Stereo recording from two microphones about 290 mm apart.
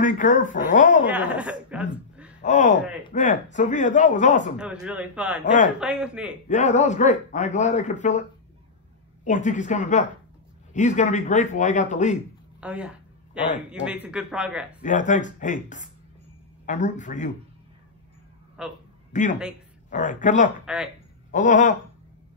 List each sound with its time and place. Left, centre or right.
0.0 s a man's voice: left
1.0 s a woman's voice: centre
2.4 s a man's voice: left
4.6 s a man's voice: centre
6.5 s a man's voice: left
9.2 s a man's voice: left
12.5 s speech: centre
14.8 s a man's voice: left
18.6 s a man's voice: centre
19.1 s a man's voice: left
20.6 s a man's voice: centre
21.3 s a man's voice: left